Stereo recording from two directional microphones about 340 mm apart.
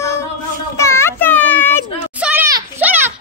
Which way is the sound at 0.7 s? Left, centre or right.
Centre.